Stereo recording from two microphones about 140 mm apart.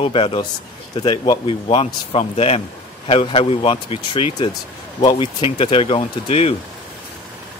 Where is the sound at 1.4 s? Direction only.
45° left (ahead or behind).